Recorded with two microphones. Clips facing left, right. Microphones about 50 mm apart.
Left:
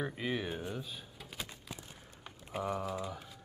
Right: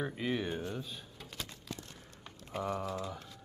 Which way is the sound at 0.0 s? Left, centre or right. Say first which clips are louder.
Right 1 dB; centre.